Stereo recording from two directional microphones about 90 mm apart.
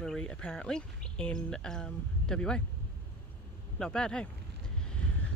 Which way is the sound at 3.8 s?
10° left (ahead or behind).